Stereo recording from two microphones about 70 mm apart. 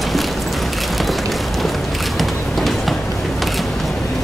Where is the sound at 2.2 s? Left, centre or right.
Centre.